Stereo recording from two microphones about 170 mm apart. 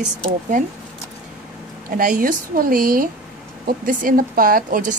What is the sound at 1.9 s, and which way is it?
A woman's voice, 55° right (ahead or behind).